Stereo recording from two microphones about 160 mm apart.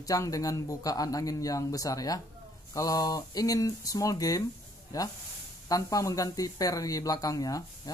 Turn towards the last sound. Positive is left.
turn(degrees=20)  # may be behind; listen again after turning